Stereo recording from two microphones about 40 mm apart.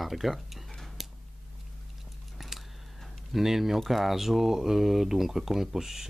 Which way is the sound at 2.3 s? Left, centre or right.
Centre.